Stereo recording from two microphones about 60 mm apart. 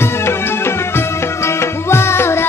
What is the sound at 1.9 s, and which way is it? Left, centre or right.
Music, left.